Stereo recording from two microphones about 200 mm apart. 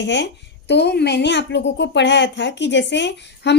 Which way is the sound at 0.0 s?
60° left (ahead or behind).